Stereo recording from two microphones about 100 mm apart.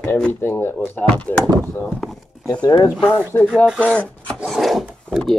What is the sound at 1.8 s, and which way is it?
Walk, 5° left (ahead or behind).